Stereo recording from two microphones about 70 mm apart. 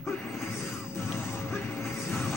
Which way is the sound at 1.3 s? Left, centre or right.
Left.